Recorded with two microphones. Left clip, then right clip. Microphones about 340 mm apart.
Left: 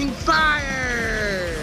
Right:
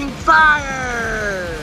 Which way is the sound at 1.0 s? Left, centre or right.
Right.